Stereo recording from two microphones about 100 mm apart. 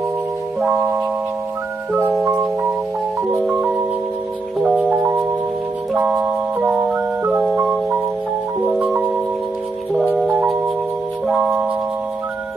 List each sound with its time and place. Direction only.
0.6 s music: 20° right (ahead or behind)
3.2 s music: 20° right (ahead or behind)
11.3 s music: 15° right (ahead or behind)